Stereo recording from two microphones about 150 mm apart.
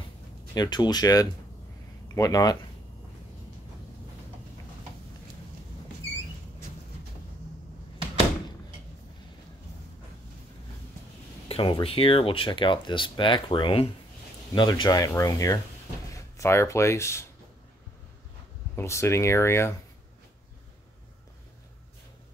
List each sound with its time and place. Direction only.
0.6 s speech: 30° left (ahead or behind)
11.4 s speech: 35° left (ahead or behind); by 17.3 s 20° left (ahead or behind)
18.8 s speech: 20° left (ahead or behind)